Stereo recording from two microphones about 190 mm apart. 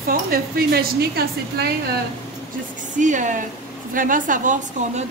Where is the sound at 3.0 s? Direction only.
40° right (ahead or behind).